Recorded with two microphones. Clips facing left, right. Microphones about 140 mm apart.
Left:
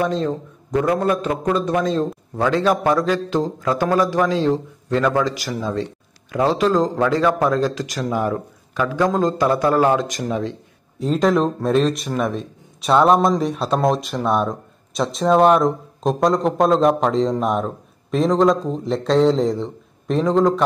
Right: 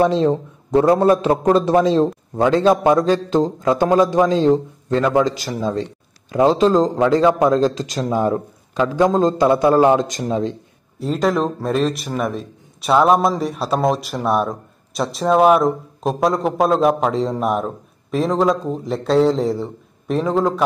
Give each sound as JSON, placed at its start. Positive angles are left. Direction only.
{"t": 0.2, "sound": "a man's voice", "side_deg": -30}
{"t": 11.0, "sound": "speech", "side_deg": 0}